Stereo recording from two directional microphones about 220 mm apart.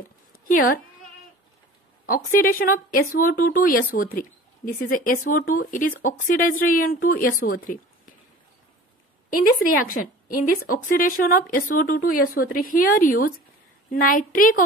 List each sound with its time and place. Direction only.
0.5 s speech: 40° left (ahead or behind)
2.0 s speech: 40° left (ahead or behind)
9.8 s speech: 40° left (ahead or behind)